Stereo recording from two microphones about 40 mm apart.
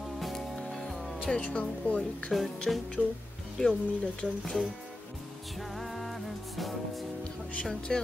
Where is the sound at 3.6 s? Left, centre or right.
Left.